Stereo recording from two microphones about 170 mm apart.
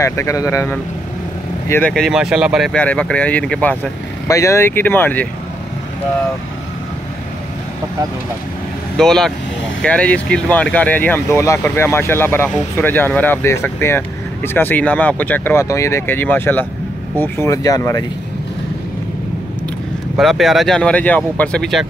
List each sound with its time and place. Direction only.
0.0 s speech: 15° left (ahead or behind)
1.7 s speech: 5° left (ahead or behind)
2.7 s speech: 5° left (ahead or behind)
4.3 s speech: 15° left (ahead or behind)
8.9 s speech: 5° left (ahead or behind); by 18.0 s 20° left (ahead or behind)
20.2 s speech: centre (ahead or behind)